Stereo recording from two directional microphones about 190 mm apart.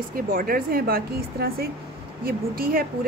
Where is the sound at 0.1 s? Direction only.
50° right (ahead or behind).